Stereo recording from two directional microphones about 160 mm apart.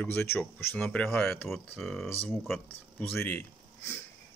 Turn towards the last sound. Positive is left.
turn(degrees=10)  # may be behind; listen again after turning